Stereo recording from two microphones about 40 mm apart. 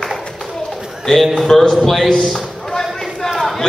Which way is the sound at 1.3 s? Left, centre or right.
Centre.